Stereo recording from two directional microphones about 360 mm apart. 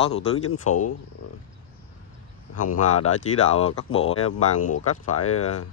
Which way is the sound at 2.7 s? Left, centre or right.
Left.